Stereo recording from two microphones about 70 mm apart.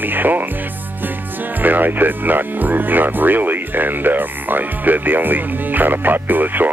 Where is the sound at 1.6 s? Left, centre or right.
Right.